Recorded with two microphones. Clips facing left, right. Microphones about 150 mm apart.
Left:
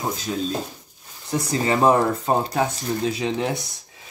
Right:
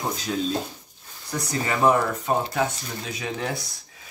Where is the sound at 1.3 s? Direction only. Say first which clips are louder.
Left 5 dB; 30° left (ahead or behind).